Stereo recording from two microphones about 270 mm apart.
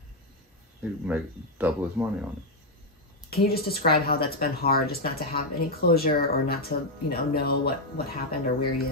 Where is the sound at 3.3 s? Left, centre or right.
Left.